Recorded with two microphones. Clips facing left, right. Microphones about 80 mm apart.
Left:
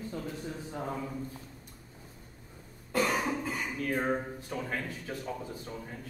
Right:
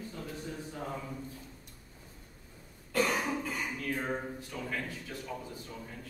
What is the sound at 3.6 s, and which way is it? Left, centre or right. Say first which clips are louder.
A man's voice: left 3 dB; left.